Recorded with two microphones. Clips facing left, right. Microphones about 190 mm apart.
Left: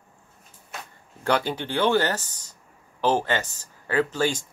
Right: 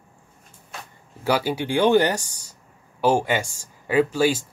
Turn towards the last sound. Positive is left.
turn(degrees=-10)  # may be behind; listen again after turning